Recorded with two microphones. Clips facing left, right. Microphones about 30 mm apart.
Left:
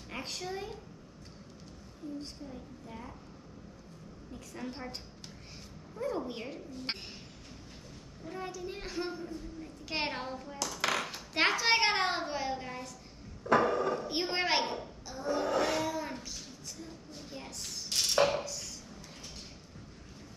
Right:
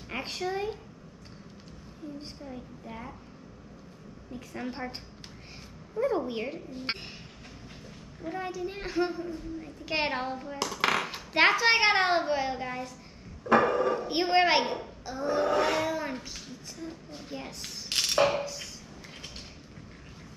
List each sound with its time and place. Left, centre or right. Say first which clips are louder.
0.1 s a child's voice: right 6 dB; centre
2.4 s a child's voice: right 4 dB; right
4.3 s a child's voice: right 5 dB; right
5.9 s a child's voice: right 7 dB; right
8.3 s a child's voice: right 6 dB; right
17.6 s a sound: right 2 dB; right
18.3 s chopping: right 3 dB; right